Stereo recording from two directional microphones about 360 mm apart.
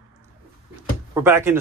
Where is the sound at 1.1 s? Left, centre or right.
Centre.